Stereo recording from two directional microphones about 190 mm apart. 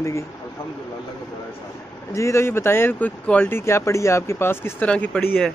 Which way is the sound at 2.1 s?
15° left (ahead or behind).